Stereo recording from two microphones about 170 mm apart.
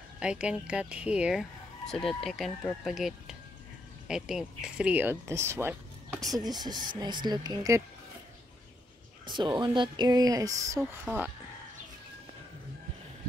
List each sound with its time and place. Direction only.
0.2 s speech: 5° right (ahead or behind)
6.3 s speech: 25° right (ahead or behind)
9.2 s speech: 25° right (ahead or behind)